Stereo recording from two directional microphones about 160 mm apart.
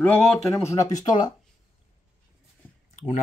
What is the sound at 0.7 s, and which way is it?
Speech, 20° left (ahead or behind).